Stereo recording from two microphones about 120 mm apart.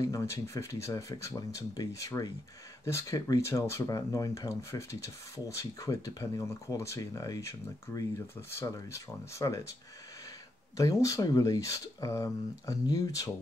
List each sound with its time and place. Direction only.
0.0 s speech: 25° left (ahead or behind)
10.8 s speech: 25° left (ahead or behind)